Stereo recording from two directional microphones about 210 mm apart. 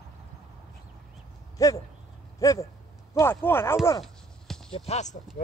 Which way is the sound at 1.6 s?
15° left (ahead or behind).